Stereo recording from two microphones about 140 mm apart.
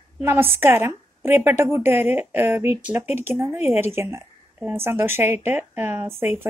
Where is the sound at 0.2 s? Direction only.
15° right (ahead or behind).